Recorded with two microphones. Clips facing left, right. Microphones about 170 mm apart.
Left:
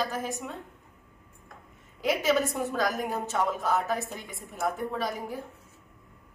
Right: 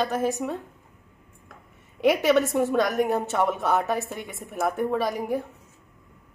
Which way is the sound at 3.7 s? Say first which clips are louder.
Right 4 dB; centre (ahead or behind).